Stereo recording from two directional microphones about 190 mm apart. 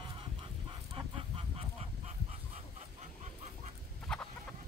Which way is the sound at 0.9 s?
30° right (ahead or behind).